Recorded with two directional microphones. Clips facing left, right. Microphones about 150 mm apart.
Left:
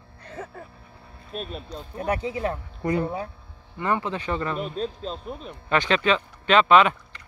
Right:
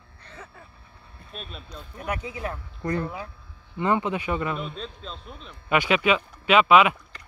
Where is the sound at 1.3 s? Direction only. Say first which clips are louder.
Left 7 dB; 40° left (ahead or behind).